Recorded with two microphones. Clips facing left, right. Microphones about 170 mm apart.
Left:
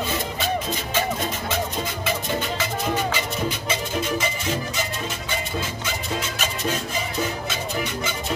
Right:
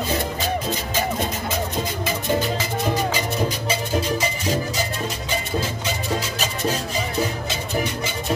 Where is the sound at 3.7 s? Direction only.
35° right (ahead or behind).